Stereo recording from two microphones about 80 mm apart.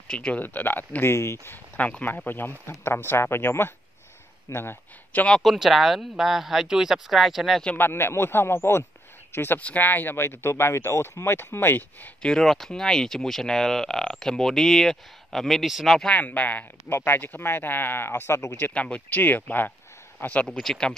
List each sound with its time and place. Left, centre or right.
0.1 s speech: centre
0.4 s speech: left
1.1 s speech: left
5.4 s speech: centre
7.7 s speech: left
12.2 s speech: centre
16.1 s speech: left
18.6 s speech: centre
20.4 s speech: centre